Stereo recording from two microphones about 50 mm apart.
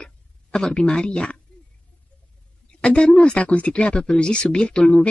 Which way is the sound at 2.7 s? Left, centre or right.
Centre.